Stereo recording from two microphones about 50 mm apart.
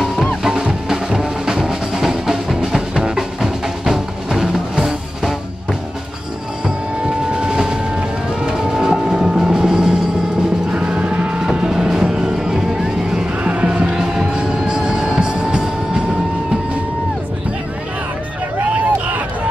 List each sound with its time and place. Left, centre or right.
0.4 s music: centre
7.3 s a sound: centre
8.5 s music: centre
11.4 s music: centre
13.4 s music: right
18.6 s vehicle: right